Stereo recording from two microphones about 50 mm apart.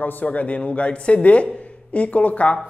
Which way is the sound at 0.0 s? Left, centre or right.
Left.